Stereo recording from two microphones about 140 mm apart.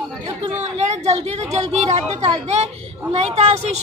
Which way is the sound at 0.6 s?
50° right (ahead or behind).